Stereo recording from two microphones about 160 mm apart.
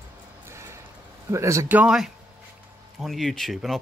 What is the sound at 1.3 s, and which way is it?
Speech, 20° right (ahead or behind).